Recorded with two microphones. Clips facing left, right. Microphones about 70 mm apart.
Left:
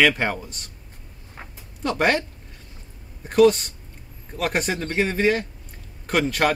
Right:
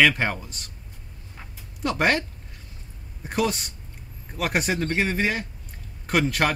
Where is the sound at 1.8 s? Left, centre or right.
Centre.